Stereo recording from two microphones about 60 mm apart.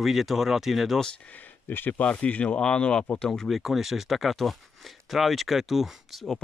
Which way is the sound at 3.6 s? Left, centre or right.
Centre.